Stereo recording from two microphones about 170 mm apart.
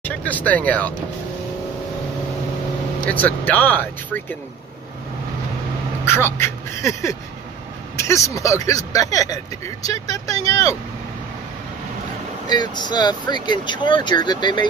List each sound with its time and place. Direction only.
0.0 s speech: 10° left (ahead or behind)
3.1 s speech: 10° left (ahead or behind)
6.0 s speech: 15° left (ahead or behind)
12.4 s speech: 25° left (ahead or behind)